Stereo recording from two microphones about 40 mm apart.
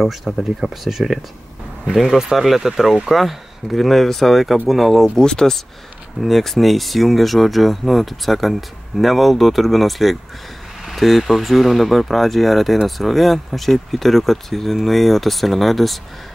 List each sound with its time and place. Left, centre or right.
0.0 s speech: centre
5.2 s speech: centre
6.2 s speech: centre